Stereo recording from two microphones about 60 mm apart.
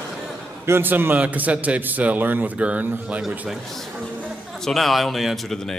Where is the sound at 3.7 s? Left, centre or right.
Centre.